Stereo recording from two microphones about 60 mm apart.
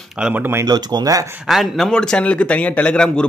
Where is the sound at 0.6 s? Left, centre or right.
Right.